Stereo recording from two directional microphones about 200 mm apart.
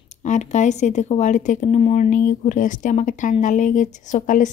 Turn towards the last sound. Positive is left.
turn(degrees=40)  # may be behind; listen again after turning